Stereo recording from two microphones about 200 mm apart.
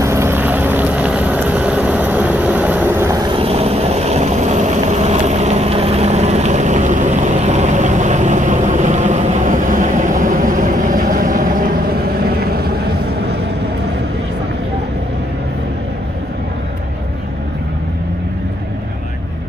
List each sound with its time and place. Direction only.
0.0 s boat: 15° right (ahead or behind)
3.3 s vehicle: 30° right (ahead or behind); by 12.7 s 50° right (ahead or behind)